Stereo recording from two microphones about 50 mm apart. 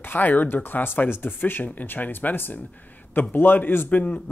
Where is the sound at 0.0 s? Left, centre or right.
Left.